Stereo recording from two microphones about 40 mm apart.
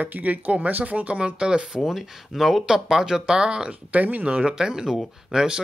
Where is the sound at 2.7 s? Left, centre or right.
Centre.